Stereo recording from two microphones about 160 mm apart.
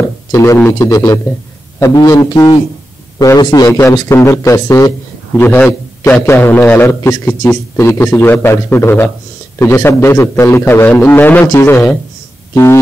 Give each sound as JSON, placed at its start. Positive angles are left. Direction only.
{"t": 0.3, "sound": "a man's voice", "side_deg": 15}